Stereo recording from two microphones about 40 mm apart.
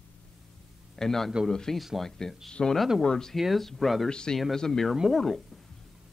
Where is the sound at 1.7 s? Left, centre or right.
Centre.